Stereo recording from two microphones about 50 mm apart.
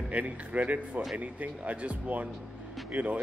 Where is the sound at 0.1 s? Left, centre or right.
Right.